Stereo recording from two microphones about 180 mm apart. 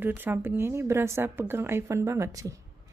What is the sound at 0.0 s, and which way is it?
Speech, 10° right (ahead or behind).